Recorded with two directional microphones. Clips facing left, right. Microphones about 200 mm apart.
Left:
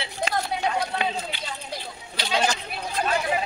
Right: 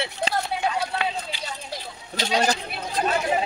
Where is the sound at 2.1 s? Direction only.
40° right (ahead or behind).